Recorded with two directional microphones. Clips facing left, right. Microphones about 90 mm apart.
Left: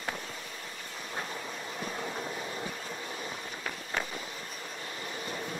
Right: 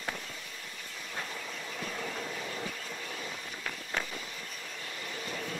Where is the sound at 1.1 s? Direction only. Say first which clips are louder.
Left 2 dB; 20° left (ahead or behind).